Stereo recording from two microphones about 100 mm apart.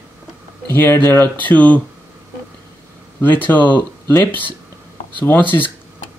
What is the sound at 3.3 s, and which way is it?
Speech, 20° left (ahead or behind).